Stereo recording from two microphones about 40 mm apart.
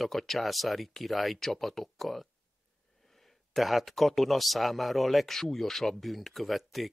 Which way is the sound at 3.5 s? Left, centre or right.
Centre.